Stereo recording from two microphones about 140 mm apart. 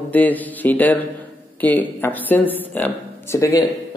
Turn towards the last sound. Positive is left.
turn(degrees=20)  # may be behind; listen again after turning